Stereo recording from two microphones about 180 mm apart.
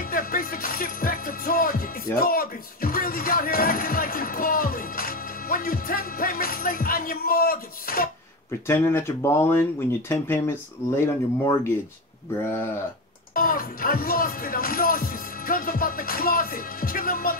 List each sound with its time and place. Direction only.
0.1 s music: 50° left (ahead or behind)
8.6 s speech: 15° left (ahead or behind)
13.3 s speech: 50° left (ahead or behind)